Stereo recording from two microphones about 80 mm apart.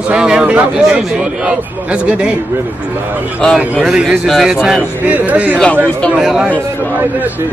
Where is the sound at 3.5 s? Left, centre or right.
Centre.